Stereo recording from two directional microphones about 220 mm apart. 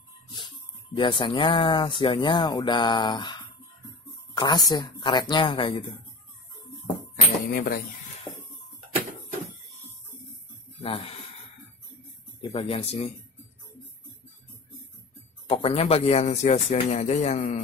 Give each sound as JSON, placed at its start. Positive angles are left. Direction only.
{"t": 0.9, "sound": "speech", "side_deg": 20}
{"t": 7.5, "sound": "speech", "side_deg": 40}
{"t": 8.3, "sound": "a sound", "side_deg": -10}
{"t": 10.8, "sound": "speech", "side_deg": 25}
{"t": 12.4, "sound": "speech", "side_deg": 25}
{"t": 15.4, "sound": "speech", "side_deg": 25}